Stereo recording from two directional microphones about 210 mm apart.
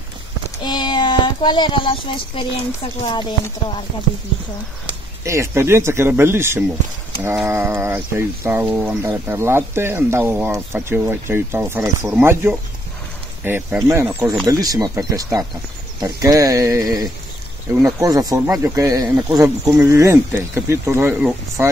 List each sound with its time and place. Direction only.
0.7 s speech: 20° left (ahead or behind)
3.1 s chopping: 20° left (ahead or behind)
5.2 s speech: 15° right (ahead or behind)